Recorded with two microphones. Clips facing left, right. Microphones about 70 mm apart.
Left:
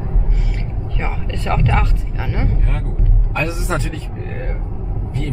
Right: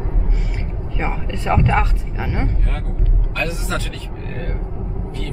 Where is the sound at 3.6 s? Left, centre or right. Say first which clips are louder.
Left 3 dB; left.